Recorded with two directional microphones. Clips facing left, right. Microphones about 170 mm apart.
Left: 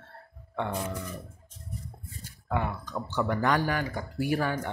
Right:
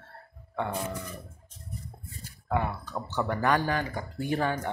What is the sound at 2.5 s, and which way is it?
Speech, 15° right (ahead or behind).